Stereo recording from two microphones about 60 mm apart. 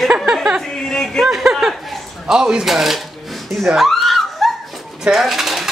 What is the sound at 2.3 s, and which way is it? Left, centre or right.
Speech, centre.